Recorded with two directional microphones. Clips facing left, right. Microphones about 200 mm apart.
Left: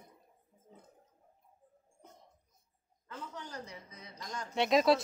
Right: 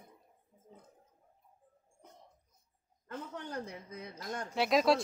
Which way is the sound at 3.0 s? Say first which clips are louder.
Right 3 dB; 55° right (ahead or behind).